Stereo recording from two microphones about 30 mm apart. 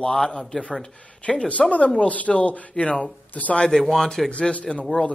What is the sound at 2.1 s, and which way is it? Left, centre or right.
Speech, left.